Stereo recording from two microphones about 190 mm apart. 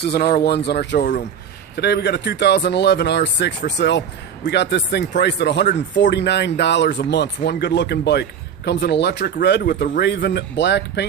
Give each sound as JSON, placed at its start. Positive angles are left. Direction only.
{"t": 0.0, "sound": "speech", "side_deg": 60}